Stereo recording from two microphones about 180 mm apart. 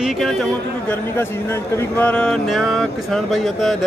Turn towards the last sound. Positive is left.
turn(degrees=0)  # may be behind; listen again after turning